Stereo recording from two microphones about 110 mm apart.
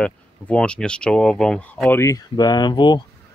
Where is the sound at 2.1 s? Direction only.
40° left (ahead or behind).